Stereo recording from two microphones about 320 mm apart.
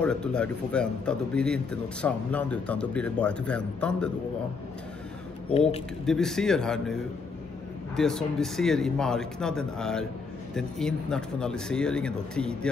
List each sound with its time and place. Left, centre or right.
0.0 s a man's voice: centre
5.5 s speech: centre
6.0 s a man's voice: centre